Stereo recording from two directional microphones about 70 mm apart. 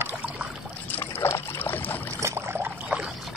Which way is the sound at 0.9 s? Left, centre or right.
Left.